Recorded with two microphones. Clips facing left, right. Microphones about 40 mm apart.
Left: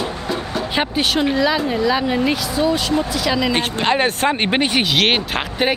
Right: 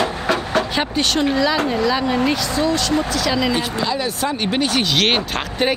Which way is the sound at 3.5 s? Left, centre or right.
Left.